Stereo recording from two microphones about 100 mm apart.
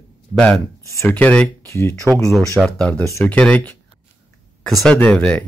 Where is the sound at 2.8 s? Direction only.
15° left (ahead or behind).